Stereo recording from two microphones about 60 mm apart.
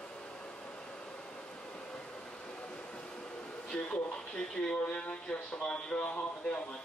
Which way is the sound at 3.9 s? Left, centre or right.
Centre.